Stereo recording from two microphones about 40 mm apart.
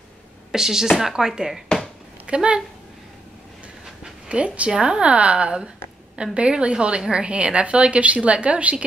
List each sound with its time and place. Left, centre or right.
0.5 s speech: centre
2.2 s speech: right
4.3 s a woman's voice: right